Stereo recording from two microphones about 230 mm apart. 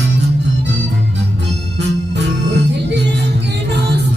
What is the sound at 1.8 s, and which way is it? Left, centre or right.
Music, right.